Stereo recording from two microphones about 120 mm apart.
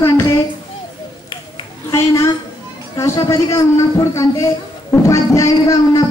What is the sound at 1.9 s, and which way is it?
A woman's voice, 25° left (ahead or behind).